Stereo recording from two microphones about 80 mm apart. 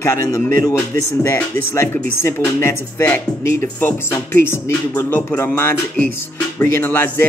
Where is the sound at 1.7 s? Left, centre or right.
Left.